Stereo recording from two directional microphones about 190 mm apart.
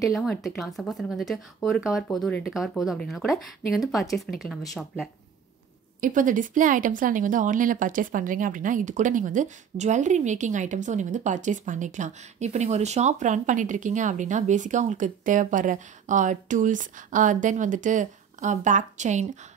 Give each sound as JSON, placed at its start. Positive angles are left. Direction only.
{"t": 0.0, "sound": "speech", "side_deg": 0}
{"t": 5.9, "sound": "speech", "side_deg": -45}